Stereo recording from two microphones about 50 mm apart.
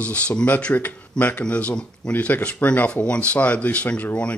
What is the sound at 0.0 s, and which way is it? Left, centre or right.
Speech, left.